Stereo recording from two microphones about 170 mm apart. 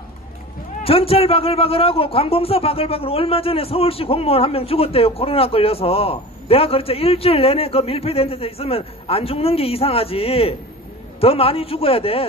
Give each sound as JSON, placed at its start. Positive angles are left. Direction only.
{"t": 0.8, "sound": "a man's voice", "side_deg": 35}